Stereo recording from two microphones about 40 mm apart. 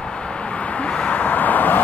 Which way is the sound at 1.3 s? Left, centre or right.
Left.